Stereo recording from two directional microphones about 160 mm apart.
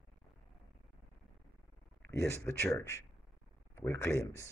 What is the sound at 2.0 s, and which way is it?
Speech, 15° left (ahead or behind).